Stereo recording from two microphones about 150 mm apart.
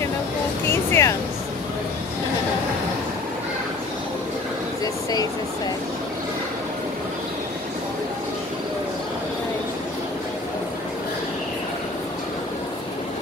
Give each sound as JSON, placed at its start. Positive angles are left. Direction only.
{"t": 0.7, "sound": "music", "side_deg": 20}